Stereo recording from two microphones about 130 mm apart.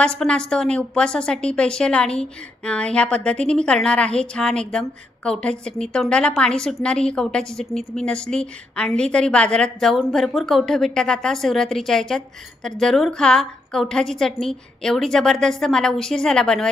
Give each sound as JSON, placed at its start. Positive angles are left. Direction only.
{"t": 0.0, "sound": "a woman's voice", "side_deg": 5}